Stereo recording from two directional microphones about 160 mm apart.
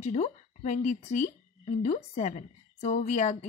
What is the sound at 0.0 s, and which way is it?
A woman's voice, 50° left (ahead or behind).